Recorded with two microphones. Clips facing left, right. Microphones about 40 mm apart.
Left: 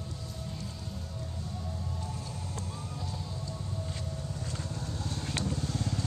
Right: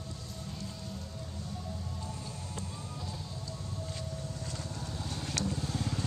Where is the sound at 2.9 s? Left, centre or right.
Centre.